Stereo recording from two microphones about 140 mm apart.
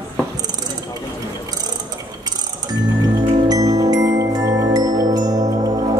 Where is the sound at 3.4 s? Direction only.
25° right (ahead or behind).